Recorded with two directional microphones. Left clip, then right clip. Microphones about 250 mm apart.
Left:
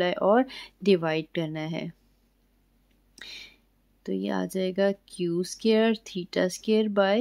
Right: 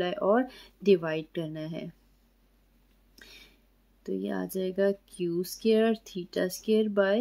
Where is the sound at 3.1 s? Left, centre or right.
Left.